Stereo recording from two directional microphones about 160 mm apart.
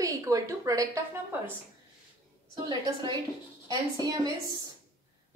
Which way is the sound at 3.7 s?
25° right (ahead or behind).